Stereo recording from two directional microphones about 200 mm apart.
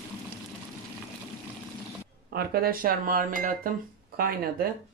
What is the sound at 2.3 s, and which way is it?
Speech, 50° right (ahead or behind).